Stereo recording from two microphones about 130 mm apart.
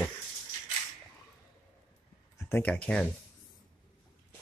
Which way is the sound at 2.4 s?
15° left (ahead or behind).